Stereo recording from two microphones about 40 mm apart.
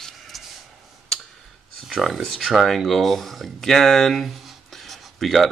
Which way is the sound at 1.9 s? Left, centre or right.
Centre.